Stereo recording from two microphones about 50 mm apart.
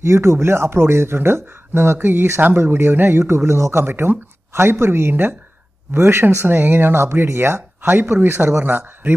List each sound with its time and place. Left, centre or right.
0.0 s speech: right
2.6 s speech: right
3.8 s speech: right
4.5 s speech: right
6.4 s speech: right
7.1 s speech: right
7.8 s speech: right